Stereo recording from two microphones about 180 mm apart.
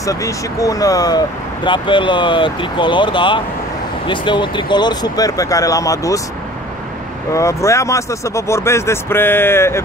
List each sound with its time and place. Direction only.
0.0 s speech: 20° left (ahead or behind)
7.3 s speech: 15° left (ahead or behind)